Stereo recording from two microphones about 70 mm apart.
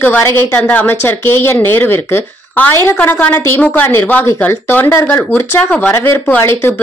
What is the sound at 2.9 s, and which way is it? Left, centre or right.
Speech, left.